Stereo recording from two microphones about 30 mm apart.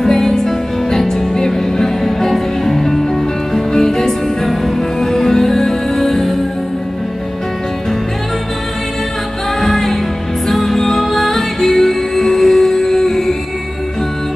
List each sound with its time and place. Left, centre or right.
0.0 s music: centre
5.0 s music: centre
9.6 s music: centre